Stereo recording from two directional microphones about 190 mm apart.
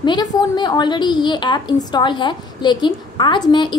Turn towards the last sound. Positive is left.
turn(degrees=25)  # may be behind; listen again after turning